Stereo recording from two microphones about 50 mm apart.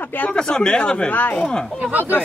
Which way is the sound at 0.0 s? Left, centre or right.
Left.